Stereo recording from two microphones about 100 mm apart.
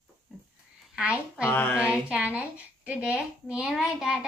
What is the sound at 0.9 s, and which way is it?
Speech, 10° right (ahead or behind).